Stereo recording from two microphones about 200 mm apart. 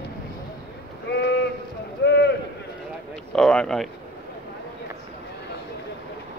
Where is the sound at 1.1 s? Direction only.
60° left (ahead or behind).